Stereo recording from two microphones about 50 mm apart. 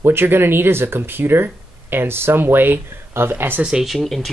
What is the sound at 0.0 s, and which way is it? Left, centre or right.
Speech, right.